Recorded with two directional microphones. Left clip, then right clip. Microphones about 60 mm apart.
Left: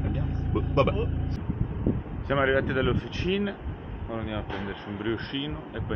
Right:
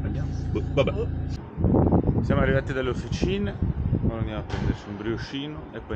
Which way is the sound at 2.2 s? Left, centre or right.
Centre.